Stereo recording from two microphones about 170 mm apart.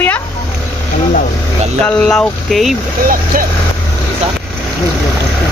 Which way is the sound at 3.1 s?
55° right (ahead or behind).